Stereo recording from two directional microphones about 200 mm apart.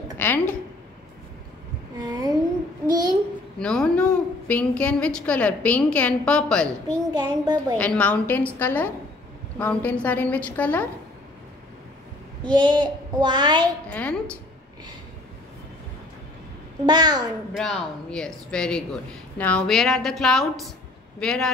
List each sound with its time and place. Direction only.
0.2 s a woman's voice: 10° left (ahead or behind)
2.0 s a sound: 20° right (ahead or behind)
2.9 s babbling: 20° right (ahead or behind)
3.5 s a woman's voice: 5° left (ahead or behind)
7.2 s child singing: 20° right (ahead or behind)
7.7 s a woman's voice: 5° left (ahead or behind)
12.4 s child singing: 20° right (ahead or behind)
13.8 s a woman's voice: 5° left (ahead or behind)
16.8 s child singing: 20° right (ahead or behind)
17.6 s a woman's voice: 5° left (ahead or behind)